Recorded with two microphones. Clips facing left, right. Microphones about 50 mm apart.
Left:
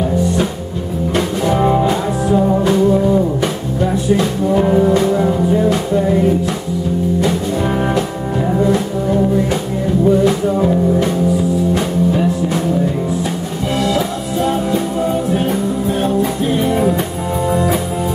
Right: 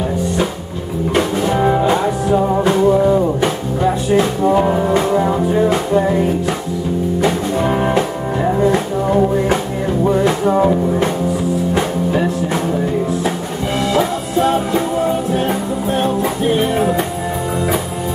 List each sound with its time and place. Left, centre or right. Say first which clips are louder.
1.4 s music: left 3 dB; centre
2.7 s music: right 2 dB; right
7.6 s music: right 2 dB; centre
10.0 s music: left 1 dB; right
13.7 s music: right 1 dB; right